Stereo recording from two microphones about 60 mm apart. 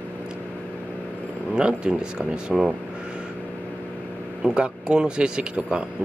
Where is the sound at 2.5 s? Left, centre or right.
Centre.